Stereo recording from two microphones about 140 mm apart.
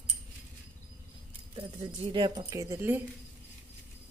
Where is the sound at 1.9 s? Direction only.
35° right (ahead or behind); by 3.0 s 20° right (ahead or behind).